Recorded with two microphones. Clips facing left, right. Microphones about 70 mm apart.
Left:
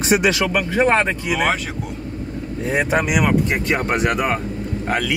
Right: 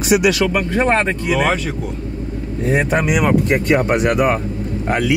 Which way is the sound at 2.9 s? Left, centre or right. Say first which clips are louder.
Even; centre.